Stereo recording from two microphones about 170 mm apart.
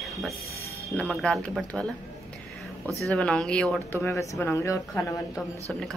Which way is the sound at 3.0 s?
5° left (ahead or behind).